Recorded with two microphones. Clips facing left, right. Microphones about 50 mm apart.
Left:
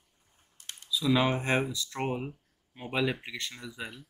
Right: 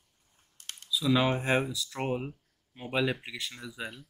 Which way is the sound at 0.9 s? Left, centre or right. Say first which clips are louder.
Even; centre.